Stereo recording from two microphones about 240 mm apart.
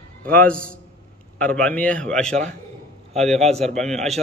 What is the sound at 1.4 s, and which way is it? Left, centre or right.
A man's voice, centre.